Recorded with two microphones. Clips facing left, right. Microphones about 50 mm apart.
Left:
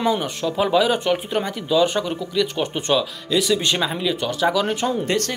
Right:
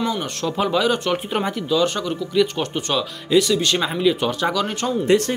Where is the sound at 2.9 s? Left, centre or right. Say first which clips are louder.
Right 3 dB; centre.